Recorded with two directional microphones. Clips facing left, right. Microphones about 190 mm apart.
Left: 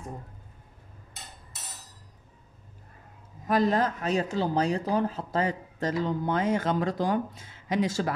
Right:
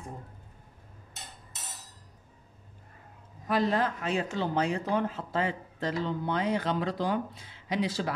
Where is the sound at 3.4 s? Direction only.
40° left (ahead or behind).